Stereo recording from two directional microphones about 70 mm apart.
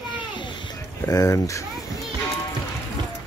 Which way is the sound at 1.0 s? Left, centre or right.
Left.